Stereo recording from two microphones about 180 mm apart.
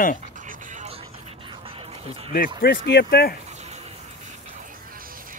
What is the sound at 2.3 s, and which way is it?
Speech, 55° left (ahead or behind).